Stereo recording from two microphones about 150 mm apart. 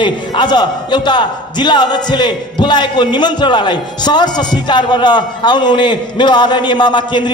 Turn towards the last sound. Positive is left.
turn(degrees=30)  # may be behind; listen again after turning